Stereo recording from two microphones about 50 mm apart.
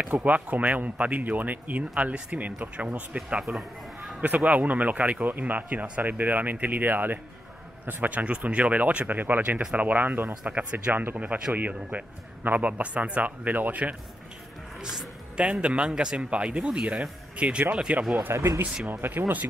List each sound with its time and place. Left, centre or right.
0.0 s speech: right
3.3 s a sound: centre
4.2 s speech: right
10.4 s speech: right
10.9 s speech: right
14.8 s speech: centre
17.4 s speech: right
18.3 s speech: right
18.9 s speech: right